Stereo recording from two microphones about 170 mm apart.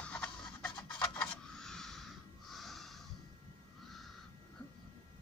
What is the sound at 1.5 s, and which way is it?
Snort, 5° left (ahead or behind).